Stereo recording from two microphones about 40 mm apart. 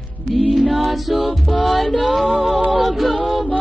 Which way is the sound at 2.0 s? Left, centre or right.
Centre.